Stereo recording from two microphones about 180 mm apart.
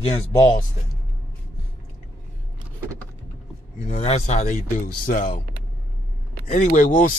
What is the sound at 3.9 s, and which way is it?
A man's voice, 35° left (ahead or behind).